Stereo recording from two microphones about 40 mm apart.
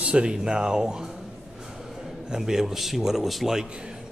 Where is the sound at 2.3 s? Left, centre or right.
Centre.